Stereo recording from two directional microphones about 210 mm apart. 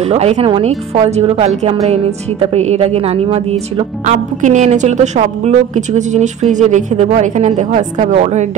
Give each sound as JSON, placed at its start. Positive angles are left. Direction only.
{"t": 0.1, "sound": "a woman's voice", "side_deg": -30}